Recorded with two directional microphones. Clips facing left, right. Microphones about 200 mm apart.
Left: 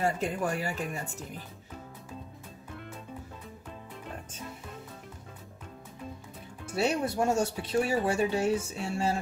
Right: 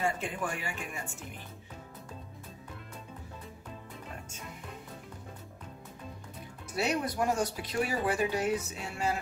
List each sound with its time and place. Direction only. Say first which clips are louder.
0.0 s speech: left 4 dB; 40° left (ahead or behind)
6.7 s speech: left 3 dB; 25° left (ahead or behind)